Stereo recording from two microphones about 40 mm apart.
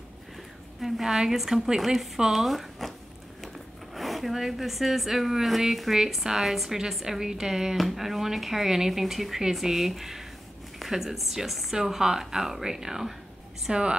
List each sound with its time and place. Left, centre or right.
0.7 s speech: centre
13.7 s a woman's voice: right